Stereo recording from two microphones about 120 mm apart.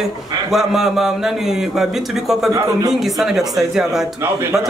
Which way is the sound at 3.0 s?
5° right (ahead or behind).